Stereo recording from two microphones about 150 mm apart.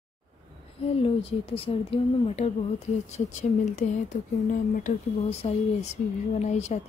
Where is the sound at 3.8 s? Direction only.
55° left (ahead or behind).